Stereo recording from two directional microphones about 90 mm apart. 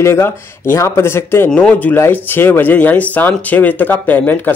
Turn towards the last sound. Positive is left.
turn(degrees=20)  # may be behind; listen again after turning